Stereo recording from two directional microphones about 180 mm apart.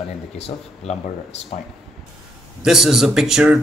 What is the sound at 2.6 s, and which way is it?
A man's voice, centre (ahead or behind).